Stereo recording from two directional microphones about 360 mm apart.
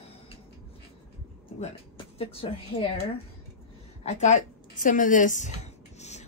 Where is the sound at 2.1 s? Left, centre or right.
Centre.